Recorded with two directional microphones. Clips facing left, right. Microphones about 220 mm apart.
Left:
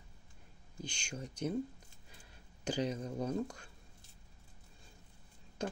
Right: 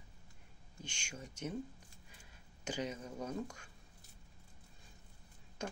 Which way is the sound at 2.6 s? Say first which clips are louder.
Left 5 dB; 35° left (ahead or behind).